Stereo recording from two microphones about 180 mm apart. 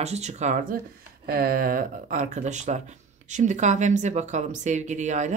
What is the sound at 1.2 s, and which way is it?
Speech, 55° right (ahead or behind).